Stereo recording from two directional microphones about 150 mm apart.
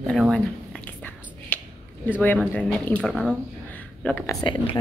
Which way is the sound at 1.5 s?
10° left (ahead or behind).